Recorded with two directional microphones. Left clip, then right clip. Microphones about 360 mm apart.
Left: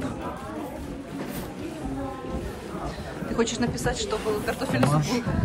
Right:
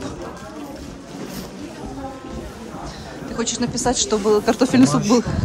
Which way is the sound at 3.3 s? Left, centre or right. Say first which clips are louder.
Right 2 dB; centre.